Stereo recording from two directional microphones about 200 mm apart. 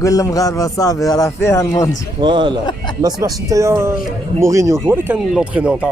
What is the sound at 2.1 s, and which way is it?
Speech, 25° right (ahead or behind).